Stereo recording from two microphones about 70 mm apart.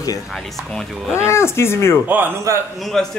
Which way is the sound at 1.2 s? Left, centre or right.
Left.